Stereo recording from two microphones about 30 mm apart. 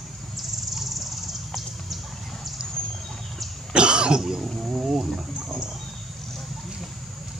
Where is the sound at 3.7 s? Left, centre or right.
Right.